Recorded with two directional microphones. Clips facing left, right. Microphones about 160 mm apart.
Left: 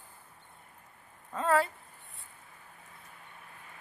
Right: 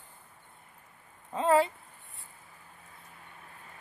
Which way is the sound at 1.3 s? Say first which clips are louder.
Right 3 dB; 20° right (ahead or behind).